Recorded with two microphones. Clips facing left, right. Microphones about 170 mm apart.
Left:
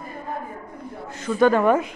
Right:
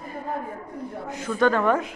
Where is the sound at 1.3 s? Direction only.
10° left (ahead or behind).